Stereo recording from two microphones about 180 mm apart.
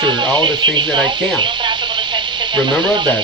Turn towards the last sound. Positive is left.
turn(degrees=-25)  # may be behind; listen again after turning